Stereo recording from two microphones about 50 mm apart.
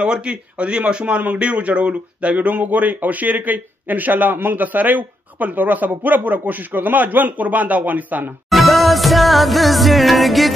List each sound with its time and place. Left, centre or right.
0.0 s a man's voice: centre; by 8.3 s right
8.5 s music: centre